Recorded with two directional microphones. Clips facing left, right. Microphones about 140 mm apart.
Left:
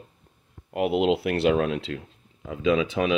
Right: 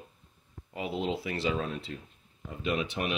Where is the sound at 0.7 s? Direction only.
65° left (ahead or behind).